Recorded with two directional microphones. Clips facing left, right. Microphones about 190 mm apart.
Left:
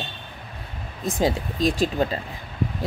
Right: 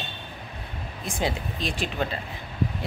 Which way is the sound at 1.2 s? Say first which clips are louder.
Left 7 dB; 40° left (ahead or behind).